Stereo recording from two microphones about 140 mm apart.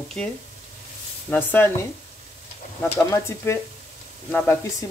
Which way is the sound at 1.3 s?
15° left (ahead or behind).